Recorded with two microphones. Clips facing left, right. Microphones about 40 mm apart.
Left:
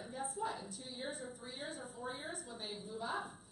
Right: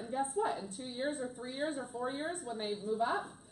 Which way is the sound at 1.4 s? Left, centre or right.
Right.